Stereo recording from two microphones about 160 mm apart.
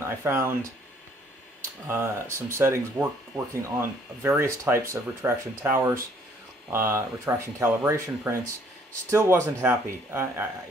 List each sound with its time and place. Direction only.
0.0 s speech: 15° right (ahead or behind)
1.9 s speech: 15° right (ahead or behind)